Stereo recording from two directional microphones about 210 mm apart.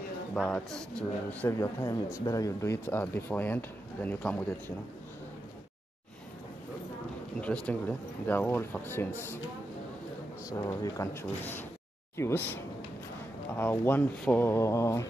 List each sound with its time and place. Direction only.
0.3 s a man's voice: 5° left (ahead or behind)
7.3 s a man's voice: 5° left (ahead or behind)
10.8 s a man's voice: 15° left (ahead or behind)
13.6 s a man's voice: 10° left (ahead or behind)